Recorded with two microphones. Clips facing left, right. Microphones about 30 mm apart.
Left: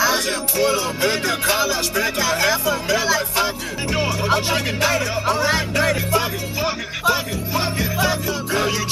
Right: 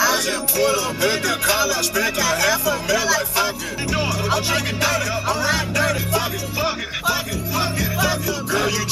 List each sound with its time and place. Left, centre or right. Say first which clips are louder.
0.0 s music: even; centre
1.0 s speech: even; centre
2.7 s music: even; centre
4.2 s speech: left 1 dB; centre
5.2 s music: left 1 dB; centre
7.6 s music: even; centre